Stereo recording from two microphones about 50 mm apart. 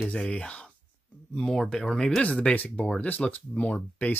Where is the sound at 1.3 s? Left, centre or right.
Centre.